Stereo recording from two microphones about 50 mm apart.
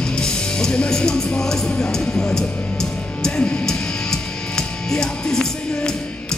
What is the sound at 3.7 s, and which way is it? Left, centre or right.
Music, centre.